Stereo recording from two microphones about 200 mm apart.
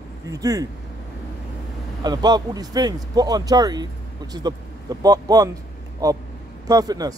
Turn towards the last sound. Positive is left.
turn(degrees=-20)  # may be behind; listen again after turning